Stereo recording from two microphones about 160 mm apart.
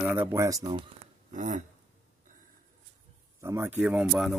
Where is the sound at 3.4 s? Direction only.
20° right (ahead or behind).